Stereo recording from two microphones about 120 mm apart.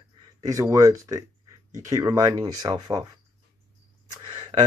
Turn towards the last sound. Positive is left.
turn(degrees=-50)  # may be behind; listen again after turning